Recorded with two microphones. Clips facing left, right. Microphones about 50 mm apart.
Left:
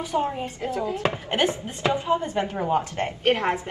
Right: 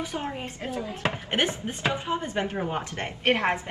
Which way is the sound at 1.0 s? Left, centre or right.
Right.